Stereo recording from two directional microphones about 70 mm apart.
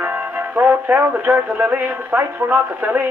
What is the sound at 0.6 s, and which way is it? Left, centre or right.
Music, right.